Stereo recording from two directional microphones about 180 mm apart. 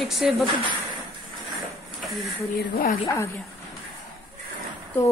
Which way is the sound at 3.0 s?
15° left (ahead or behind).